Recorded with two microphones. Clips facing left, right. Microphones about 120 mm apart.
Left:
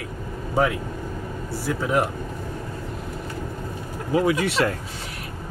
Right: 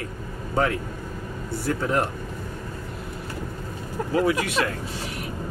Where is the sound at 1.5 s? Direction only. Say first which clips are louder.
Even; centre (ahead or behind).